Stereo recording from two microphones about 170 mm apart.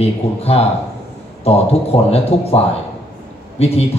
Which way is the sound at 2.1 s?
35° left (ahead or behind).